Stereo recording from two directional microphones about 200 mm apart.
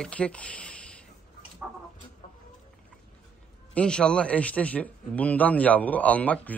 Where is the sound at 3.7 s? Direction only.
5° left (ahead or behind).